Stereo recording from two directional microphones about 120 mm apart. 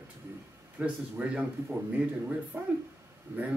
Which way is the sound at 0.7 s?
10° right (ahead or behind).